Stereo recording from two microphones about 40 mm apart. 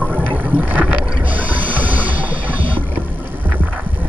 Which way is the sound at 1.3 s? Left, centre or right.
Right.